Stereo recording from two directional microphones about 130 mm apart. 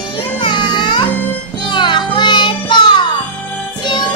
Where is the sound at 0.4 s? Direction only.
35° left (ahead or behind).